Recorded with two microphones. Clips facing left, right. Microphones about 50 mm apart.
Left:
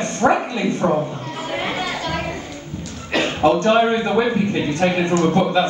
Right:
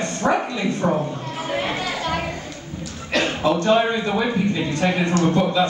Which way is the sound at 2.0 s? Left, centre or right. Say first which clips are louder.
Even; centre.